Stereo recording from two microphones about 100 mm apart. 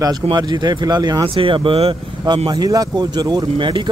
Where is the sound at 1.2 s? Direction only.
60° right (ahead or behind).